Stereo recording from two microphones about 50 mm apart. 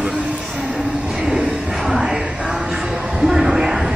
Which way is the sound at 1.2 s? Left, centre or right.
Centre.